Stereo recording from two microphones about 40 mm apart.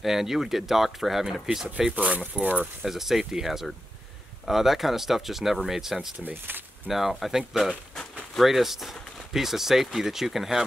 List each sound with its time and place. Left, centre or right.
0.0 s speech: centre
2.0 s speech: right
2.8 s speech: centre
6.3 s speech: right
6.9 s speech: centre